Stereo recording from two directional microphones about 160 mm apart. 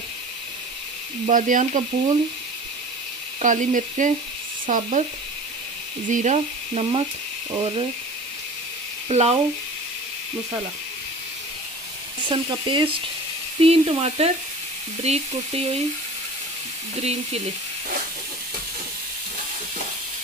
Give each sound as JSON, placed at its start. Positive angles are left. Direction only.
{"t": 1.3, "sound": "frying", "side_deg": -55}
{"t": 3.4, "sound": "frying", "side_deg": -55}
{"t": 6.0, "sound": "speech", "side_deg": -50}
{"t": 9.1, "sound": "speech", "side_deg": -40}
{"t": 12.3, "sound": "speech", "side_deg": -30}
{"t": 17.0, "sound": "speech", "side_deg": -40}